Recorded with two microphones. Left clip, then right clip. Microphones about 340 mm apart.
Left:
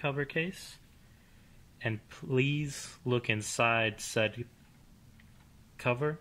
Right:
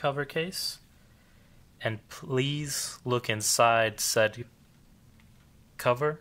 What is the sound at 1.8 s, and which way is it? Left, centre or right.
Speech, right.